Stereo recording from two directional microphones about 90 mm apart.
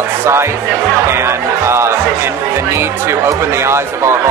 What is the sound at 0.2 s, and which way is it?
Speech, 30° right (ahead or behind).